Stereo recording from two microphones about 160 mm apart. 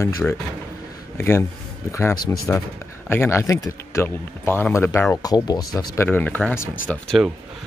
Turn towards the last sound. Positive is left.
turn(degrees=0)  # may be behind; listen again after turning